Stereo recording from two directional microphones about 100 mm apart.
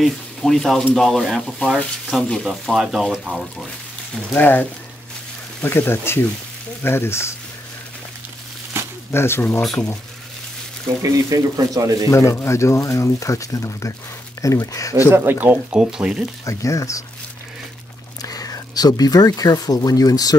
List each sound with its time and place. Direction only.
0.0 s speech: centre (ahead or behind)
4.3 s speech: 20° left (ahead or behind)
9.1 s speech: 25° left (ahead or behind)
9.6 s speech: 5° left (ahead or behind)
11.0 s speech: 35° right (ahead or behind)
12.1 s speech: 30° left (ahead or behind)
15.0 s speech: 25° right (ahead or behind); by 16.3 s 5° right (ahead or behind)
16.4 s speech: 35° left (ahead or behind)
18.2 s speech: 35° left (ahead or behind)